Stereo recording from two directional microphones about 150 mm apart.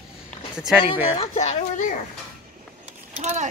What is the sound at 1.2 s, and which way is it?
Speech, 50° left (ahead or behind).